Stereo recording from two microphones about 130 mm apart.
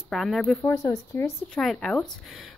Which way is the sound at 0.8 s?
25° left (ahead or behind).